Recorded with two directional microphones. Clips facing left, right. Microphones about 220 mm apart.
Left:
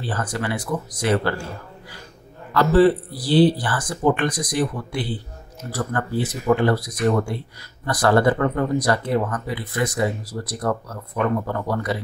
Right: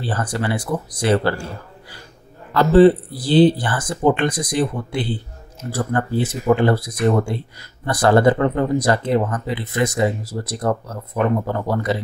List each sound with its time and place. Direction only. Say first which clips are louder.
0.0 s speech: right 3 dB; 30° right (ahead or behind)
2.5 s speech: right 4 dB; 25° right (ahead or behind)